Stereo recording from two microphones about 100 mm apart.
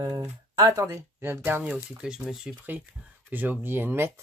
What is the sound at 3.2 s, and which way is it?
Speech, 20° right (ahead or behind).